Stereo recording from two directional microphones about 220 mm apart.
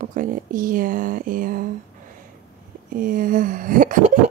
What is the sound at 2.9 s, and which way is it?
Speech, 40° right (ahead or behind).